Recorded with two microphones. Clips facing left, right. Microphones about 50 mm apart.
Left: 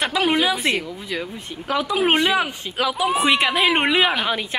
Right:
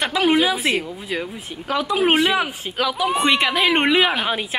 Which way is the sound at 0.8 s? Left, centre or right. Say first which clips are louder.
Right 1 dB; right.